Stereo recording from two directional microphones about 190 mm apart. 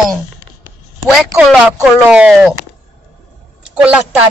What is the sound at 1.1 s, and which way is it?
Speech, centre (ahead or behind).